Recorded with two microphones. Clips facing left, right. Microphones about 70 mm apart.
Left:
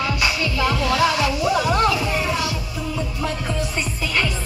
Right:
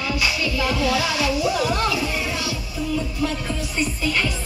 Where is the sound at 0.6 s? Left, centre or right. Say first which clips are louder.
Left 3 dB; left.